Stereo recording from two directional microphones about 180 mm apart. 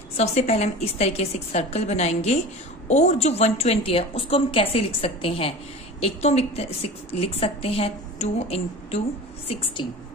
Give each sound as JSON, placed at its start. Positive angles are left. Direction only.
{"t": 0.2, "sound": "a woman's voice", "side_deg": 40}